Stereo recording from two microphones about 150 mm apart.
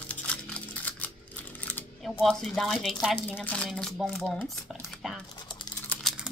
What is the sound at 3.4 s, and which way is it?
Speech, 5° left (ahead or behind).